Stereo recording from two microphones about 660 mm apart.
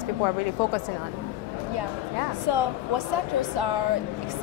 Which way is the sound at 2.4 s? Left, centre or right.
Right.